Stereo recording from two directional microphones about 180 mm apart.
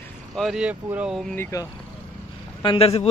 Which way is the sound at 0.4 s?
5° right (ahead or behind).